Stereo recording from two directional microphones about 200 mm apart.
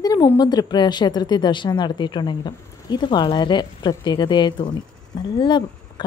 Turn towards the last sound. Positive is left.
turn(degrees=25)  # may be behind; listen again after turning